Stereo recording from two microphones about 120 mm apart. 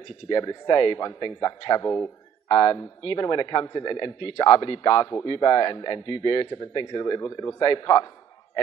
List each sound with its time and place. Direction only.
0.3 s speech: 35° left (ahead or behind)
7.5 s speech: 35° left (ahead or behind)